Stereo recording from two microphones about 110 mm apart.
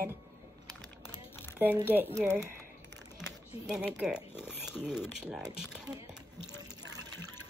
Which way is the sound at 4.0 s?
5° right (ahead or behind).